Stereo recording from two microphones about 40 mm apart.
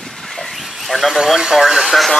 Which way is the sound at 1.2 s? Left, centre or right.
Centre.